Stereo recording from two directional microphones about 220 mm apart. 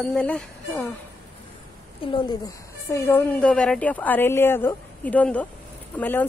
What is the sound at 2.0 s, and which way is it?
Speech, 20° left (ahead or behind).